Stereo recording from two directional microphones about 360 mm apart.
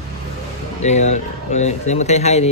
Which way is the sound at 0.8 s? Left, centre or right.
Centre.